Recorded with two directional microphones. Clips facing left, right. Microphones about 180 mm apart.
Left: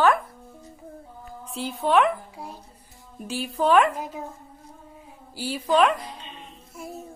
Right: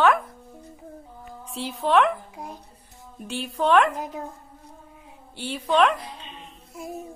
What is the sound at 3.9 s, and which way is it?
Speech, 15° right (ahead or behind).